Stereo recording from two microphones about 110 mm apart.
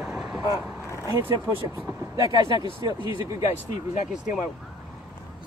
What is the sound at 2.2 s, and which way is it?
Speech, 45° left (ahead or behind).